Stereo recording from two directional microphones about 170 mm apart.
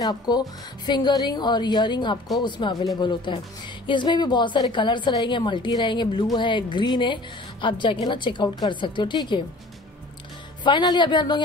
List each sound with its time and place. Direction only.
0.0 s a woman's voice: 25° left (ahead or behind)
10.6 s a woman's voice: 25° left (ahead or behind)